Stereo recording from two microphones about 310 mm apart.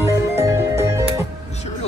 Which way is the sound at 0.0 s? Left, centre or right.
Centre.